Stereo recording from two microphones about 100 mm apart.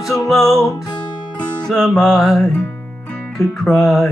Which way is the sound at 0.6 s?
35° left (ahead or behind).